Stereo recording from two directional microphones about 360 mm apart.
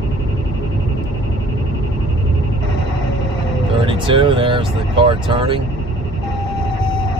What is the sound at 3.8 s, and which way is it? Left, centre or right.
Speech, centre.